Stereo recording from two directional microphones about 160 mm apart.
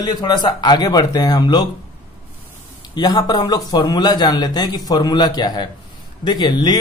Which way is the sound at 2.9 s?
25° left (ahead or behind).